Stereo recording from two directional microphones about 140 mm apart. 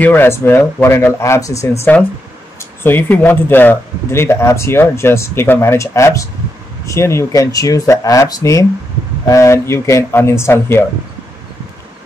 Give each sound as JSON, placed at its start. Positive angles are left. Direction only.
{"t": 0.0, "sound": "speech", "side_deg": 15}
{"t": 2.8, "sound": "speech", "side_deg": 15}